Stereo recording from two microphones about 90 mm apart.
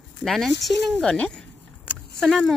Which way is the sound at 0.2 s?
Centre (ahead or behind).